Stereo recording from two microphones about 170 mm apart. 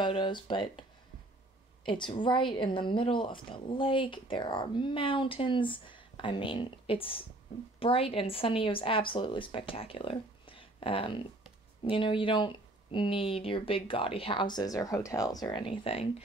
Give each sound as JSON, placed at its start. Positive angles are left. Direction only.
{"t": 0.0, "sound": "speech", "side_deg": 30}
{"t": 1.9, "sound": "speech", "side_deg": 30}